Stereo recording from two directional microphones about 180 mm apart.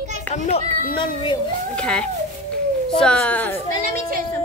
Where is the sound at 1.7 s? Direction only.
5° left (ahead or behind).